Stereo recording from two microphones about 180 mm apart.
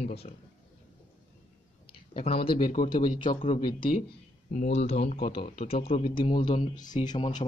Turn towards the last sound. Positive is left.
turn(degrees=25)  # may be behind; listen again after turning